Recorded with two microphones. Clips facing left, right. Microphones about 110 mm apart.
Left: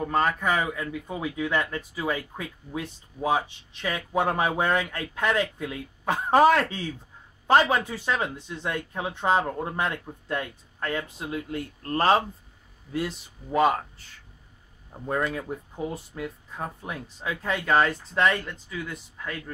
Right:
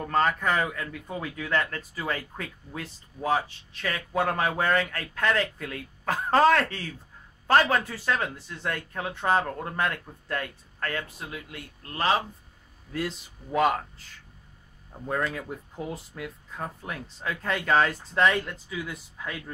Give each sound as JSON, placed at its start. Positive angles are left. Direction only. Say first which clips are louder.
{"t": 0.0, "sound": "speech", "louder": "even", "side_deg": 5}
{"t": 12.9, "sound": "speech", "louder": "left 2 dB", "side_deg": 5}
{"t": 15.0, "sound": "speech", "louder": "left 2 dB", "side_deg": 5}
{"t": 15.7, "sound": "speech", "louder": "left 2 dB", "side_deg": 0}